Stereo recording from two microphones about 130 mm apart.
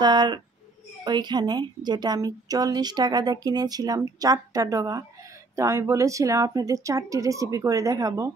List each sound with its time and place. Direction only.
0.0 s speech: 35° right (ahead or behind)